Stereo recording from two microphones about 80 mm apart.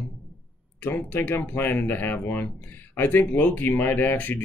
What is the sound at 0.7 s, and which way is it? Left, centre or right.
Speech, left.